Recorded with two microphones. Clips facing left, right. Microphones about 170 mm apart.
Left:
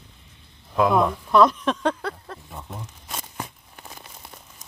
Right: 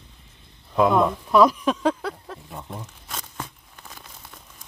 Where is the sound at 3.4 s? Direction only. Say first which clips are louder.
Left 1 dB; 10° left (ahead or behind).